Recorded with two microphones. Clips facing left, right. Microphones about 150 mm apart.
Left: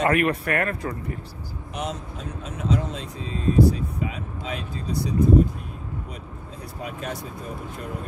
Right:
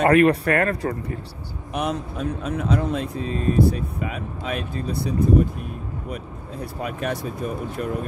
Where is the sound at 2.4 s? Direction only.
60° right (ahead or behind).